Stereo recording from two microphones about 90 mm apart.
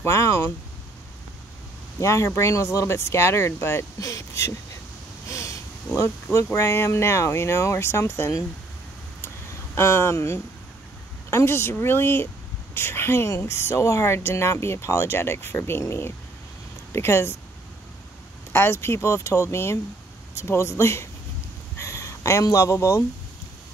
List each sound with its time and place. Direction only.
0.0 s speech: 35° left (ahead or behind)
2.0 s speech: 35° left (ahead or behind)
5.3 s a sound: 35° left (ahead or behind)
6.3 s speech: 35° left (ahead or behind)
9.8 s speech: 30° left (ahead or behind)
16.9 s speech: 30° left (ahead or behind)
18.5 s speech: 30° left (ahead or behind)
21.7 s a sound: 35° left (ahead or behind)